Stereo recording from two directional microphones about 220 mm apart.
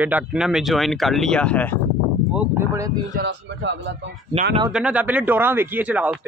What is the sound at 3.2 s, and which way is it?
Speech, 50° right (ahead or behind).